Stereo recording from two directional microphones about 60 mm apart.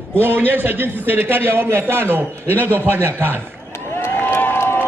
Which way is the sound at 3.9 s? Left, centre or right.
Left.